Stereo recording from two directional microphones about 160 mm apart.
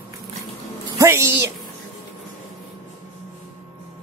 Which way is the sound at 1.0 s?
15° right (ahead or behind).